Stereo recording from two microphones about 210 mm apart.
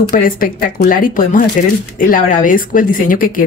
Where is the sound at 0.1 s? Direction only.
45° left (ahead or behind).